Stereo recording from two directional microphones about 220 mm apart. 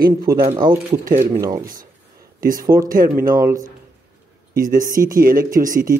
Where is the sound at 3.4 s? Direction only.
15° right (ahead or behind).